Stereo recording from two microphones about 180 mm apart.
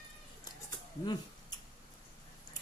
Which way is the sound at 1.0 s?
25° left (ahead or behind).